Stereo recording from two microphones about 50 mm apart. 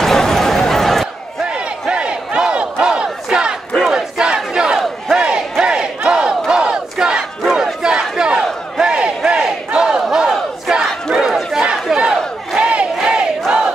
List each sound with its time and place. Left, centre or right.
0.0 s a sound: centre
1.4 s battle cry: right
10.7 s crowd: centre
11.6 s crowd: centre
12.5 s battle cry: right